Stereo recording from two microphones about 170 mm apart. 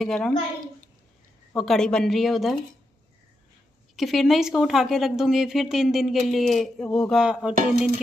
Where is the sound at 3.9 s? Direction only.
Centre (ahead or behind).